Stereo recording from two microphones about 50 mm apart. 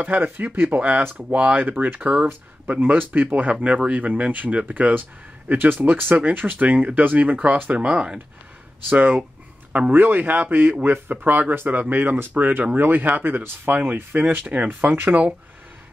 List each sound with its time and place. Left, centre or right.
0.1 s speech: right
2.0 s speech: right
2.8 s speech: right
7.7 s speech: right
8.9 s speech: right